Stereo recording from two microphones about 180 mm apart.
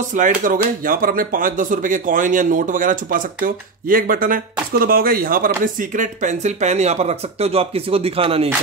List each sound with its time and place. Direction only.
0.1 s speech: 45° right (ahead or behind)